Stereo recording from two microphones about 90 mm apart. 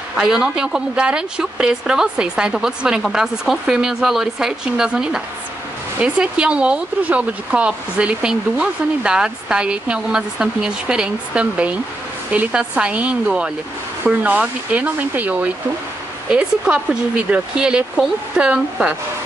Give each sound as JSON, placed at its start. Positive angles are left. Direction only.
{"t": 0.1, "sound": "speech", "side_deg": -10}